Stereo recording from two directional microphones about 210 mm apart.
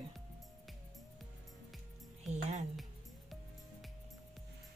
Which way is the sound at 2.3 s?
35° right (ahead or behind).